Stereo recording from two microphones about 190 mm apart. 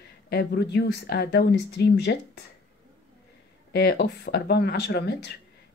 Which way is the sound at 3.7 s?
55° left (ahead or behind).